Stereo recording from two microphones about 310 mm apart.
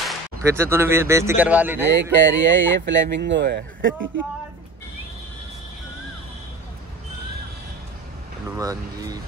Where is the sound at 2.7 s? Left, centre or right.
Right.